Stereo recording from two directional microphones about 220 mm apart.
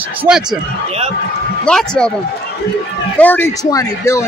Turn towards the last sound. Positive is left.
turn(degrees=15)  # may be behind; listen again after turning